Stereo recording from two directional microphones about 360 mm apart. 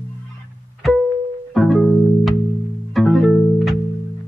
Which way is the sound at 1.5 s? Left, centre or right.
Centre.